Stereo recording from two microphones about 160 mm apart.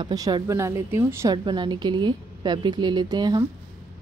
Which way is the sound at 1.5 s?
30° right (ahead or behind).